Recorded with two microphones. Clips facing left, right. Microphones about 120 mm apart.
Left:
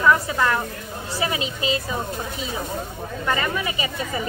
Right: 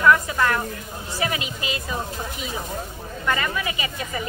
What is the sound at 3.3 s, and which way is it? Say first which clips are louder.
Speech: even; 30° left (ahead or behind).